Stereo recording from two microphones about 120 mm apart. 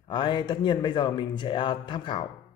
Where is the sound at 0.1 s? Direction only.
40° left (ahead or behind).